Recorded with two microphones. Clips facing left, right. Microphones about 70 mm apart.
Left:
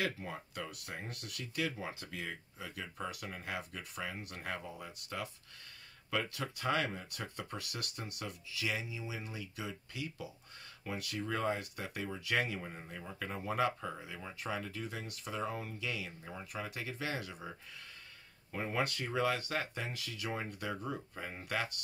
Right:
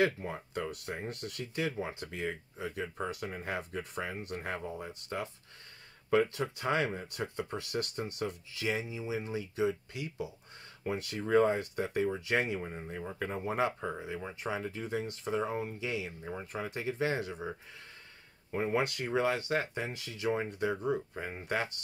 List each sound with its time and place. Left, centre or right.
0.0 s speech: right
18.5 s speech: right